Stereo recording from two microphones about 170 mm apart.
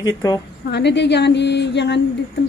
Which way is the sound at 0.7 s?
85° left.